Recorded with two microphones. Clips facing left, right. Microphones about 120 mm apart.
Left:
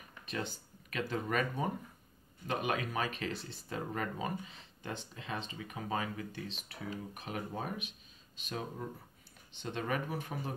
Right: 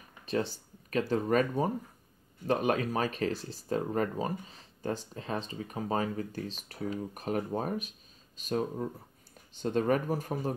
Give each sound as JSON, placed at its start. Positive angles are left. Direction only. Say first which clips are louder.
{"t": 0.3, "sound": "speech", "louder": "right 8 dB", "side_deg": -35}